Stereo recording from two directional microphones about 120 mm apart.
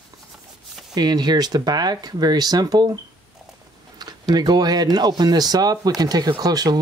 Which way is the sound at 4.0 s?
35° right (ahead or behind).